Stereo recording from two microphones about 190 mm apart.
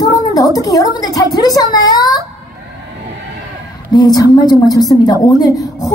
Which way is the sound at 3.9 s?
20° left (ahead or behind).